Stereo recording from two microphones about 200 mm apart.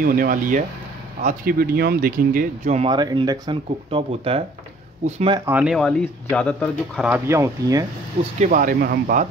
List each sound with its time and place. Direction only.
0.0 s speech: 45° right (ahead or behind)
2.9 s speech: 20° right (ahead or behind)
5.4 s speech: 10° right (ahead or behind)
7.1 s speech: 15° right (ahead or behind)
8.4 s speech: 40° right (ahead or behind)